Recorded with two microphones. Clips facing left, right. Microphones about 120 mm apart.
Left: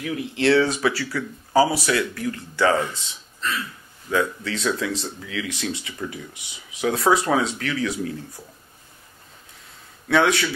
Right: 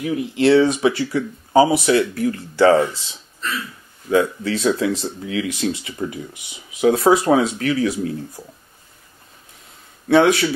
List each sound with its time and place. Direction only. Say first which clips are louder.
0.0 s speech: right 5 dB; 25° right (ahead or behind)
4.1 s speech: right 6 dB; 30° right (ahead or behind)
10.0 s speech: right 5 dB; 25° right (ahead or behind)